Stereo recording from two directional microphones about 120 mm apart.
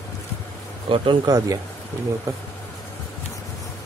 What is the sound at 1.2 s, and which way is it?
Speech, 30° right (ahead or behind).